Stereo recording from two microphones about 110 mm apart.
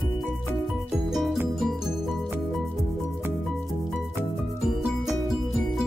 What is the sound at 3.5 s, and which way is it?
Music, centre (ahead or behind).